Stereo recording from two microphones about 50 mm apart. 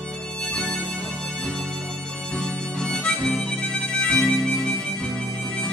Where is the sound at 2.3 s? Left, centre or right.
Centre.